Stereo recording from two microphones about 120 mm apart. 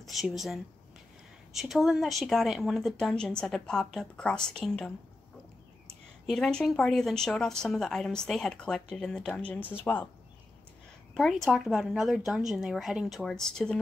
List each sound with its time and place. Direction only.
0.0 s a woman's voice: centre (ahead or behind); by 10.0 s 15° left (ahead or behind)
11.1 s speech: centre (ahead or behind)